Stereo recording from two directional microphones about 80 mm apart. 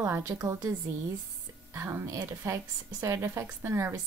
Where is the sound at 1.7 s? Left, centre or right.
Right.